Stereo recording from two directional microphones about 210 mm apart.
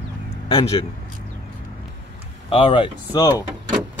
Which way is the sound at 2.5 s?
25° left (ahead or behind).